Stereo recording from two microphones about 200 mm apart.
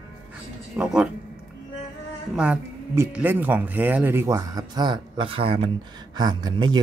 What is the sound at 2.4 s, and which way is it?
Speech, 5° right (ahead or behind).